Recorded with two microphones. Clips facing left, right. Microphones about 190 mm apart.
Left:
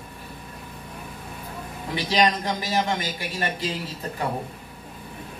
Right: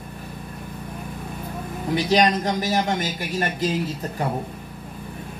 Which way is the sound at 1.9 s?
45° right (ahead or behind).